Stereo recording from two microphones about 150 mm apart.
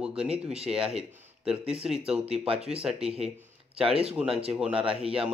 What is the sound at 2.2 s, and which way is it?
Speech, 45° right (ahead or behind).